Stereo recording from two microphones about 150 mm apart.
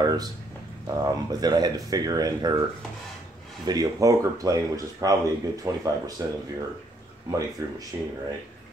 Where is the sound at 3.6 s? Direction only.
25° right (ahead or behind).